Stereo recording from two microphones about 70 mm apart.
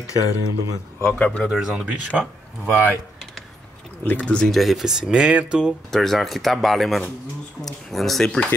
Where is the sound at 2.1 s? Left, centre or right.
Centre.